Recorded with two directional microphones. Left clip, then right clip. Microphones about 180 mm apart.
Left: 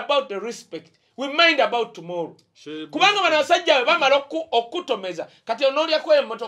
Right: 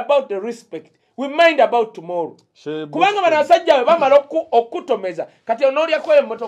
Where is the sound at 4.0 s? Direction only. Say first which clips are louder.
Right 6 dB; 25° left (ahead or behind).